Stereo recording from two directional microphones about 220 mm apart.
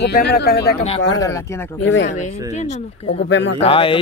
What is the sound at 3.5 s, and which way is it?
Speech, 25° left (ahead or behind).